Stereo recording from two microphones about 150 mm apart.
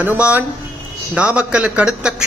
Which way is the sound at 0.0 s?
10° right (ahead or behind).